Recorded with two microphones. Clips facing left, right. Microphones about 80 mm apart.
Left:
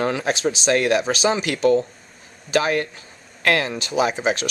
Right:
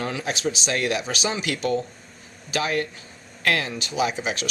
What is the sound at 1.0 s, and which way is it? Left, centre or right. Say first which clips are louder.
Speech: left 7 dB; left.